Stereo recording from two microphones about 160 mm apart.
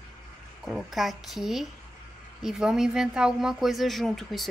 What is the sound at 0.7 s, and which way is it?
Speech, centre (ahead or behind).